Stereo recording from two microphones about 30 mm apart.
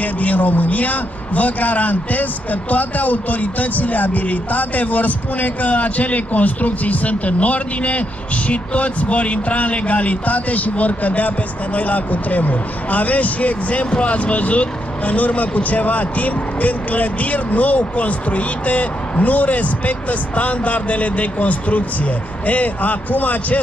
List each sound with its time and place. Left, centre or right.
0.0 s speech: left